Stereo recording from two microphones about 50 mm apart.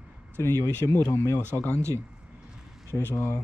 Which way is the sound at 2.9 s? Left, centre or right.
Left.